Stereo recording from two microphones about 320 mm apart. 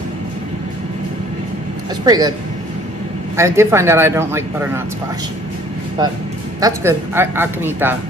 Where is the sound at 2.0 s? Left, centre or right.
Centre.